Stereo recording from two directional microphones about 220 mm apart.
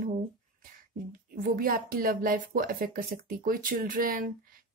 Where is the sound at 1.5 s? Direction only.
40° right (ahead or behind).